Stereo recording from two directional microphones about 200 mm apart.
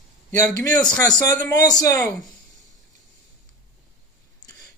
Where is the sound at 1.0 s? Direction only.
20° left (ahead or behind).